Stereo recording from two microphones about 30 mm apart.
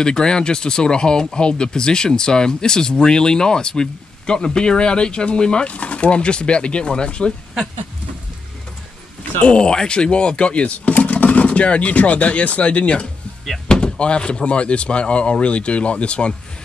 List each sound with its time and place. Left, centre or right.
0.0 s speech: left
5.7 s speech: left
9.4 s speech: left